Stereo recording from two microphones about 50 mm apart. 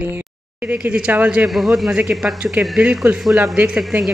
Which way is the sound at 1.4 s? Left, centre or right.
Centre.